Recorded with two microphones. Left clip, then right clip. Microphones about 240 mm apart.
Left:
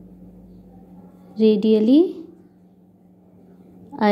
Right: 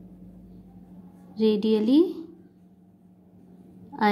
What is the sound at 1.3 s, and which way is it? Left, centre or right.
Speech, centre.